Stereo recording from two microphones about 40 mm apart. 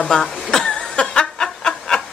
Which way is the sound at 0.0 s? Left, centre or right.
Centre.